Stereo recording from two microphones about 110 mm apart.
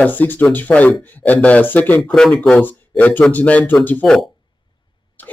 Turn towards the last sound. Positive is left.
turn(degrees=5)  # may be behind; listen again after turning